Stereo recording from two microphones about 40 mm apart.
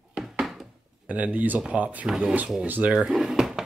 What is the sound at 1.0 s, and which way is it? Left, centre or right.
Speech, right.